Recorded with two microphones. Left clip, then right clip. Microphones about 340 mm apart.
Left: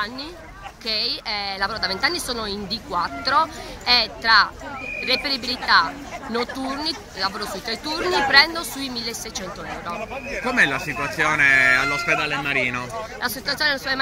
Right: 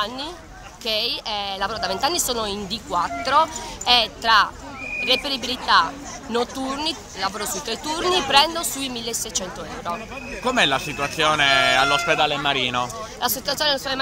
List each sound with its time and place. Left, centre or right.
0.9 s speech: centre
10.4 s speech: centre
12.2 s speech: right
12.7 s speech: centre